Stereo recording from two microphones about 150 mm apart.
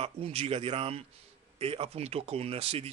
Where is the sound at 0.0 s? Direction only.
40° right (ahead or behind).